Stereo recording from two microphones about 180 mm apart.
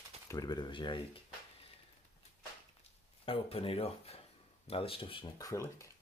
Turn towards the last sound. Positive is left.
turn(degrees=20)  # may be behind; listen again after turning